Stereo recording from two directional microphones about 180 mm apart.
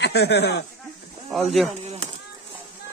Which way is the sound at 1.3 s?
Centre (ahead or behind).